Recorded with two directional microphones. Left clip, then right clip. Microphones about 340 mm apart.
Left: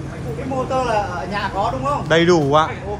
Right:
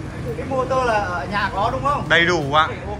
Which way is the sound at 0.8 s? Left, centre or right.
Left.